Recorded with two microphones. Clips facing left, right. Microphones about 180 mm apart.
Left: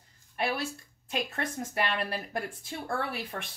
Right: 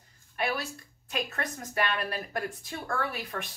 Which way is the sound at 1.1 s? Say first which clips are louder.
Left 1 dB; 25° left (ahead or behind).